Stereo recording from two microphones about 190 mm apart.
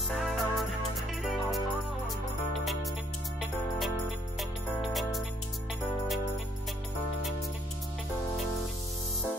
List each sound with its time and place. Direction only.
0.1 s music: centre (ahead or behind)
2.6 s music: centre (ahead or behind)
4.4 s music: centre (ahead or behind)